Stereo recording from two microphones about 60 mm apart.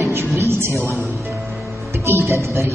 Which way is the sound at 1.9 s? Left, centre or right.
Right.